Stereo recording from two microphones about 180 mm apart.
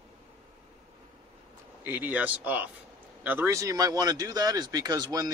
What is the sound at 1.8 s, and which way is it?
Speech, 10° right (ahead or behind).